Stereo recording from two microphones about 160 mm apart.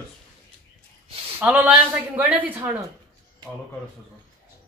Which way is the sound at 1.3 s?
10° right (ahead or behind).